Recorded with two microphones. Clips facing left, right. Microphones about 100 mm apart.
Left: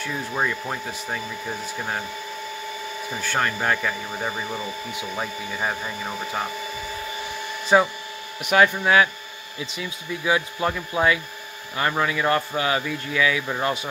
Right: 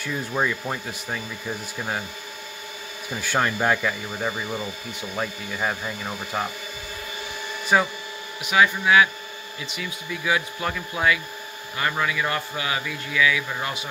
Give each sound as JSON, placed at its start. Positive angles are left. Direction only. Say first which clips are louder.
{"t": 0.0, "sound": "speech", "louder": "even", "side_deg": 0}
{"t": 3.2, "sound": "speech", "louder": "right 2 dB", "side_deg": -10}
{"t": 7.6, "sound": "speech", "louder": "left 3 dB", "side_deg": 25}
{"t": 8.5, "sound": "speech", "louder": "left 1 dB", "side_deg": 40}
{"t": 9.6, "sound": "speech", "louder": "left 2 dB", "side_deg": 25}